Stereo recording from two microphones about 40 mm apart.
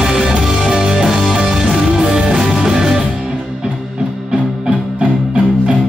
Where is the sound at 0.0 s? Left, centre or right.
Centre.